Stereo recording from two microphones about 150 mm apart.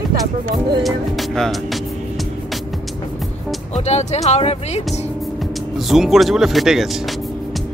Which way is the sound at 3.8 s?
45° left (ahead or behind).